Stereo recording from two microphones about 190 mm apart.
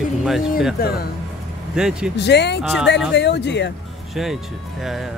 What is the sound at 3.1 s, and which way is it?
Speech, 65° left (ahead or behind).